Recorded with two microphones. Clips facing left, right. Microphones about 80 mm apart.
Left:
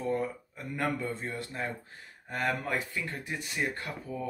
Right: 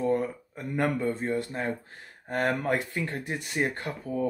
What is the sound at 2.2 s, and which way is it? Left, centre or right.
Speech, right.